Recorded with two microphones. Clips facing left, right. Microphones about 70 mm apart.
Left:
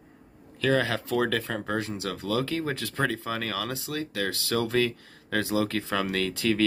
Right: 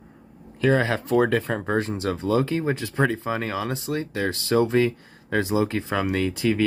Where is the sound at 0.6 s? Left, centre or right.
Right.